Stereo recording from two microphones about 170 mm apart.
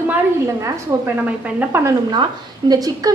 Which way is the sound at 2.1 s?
25° right (ahead or behind).